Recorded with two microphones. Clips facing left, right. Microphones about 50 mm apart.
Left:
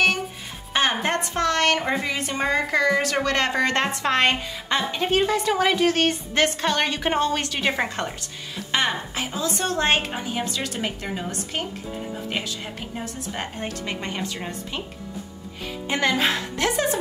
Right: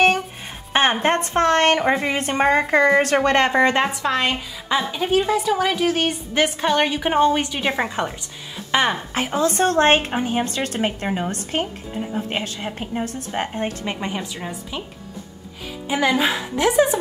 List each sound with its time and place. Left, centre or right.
0.7 s a woman's voice: right
3.7 s a woman's voice: centre
8.7 s a woman's voice: right
9.1 s a woman's voice: right
14.0 s a woman's voice: centre
15.9 s a woman's voice: centre